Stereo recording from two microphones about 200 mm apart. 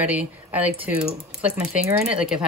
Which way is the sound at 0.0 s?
10° right (ahead or behind).